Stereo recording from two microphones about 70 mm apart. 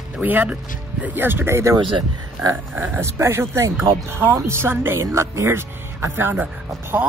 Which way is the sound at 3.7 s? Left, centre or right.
Right.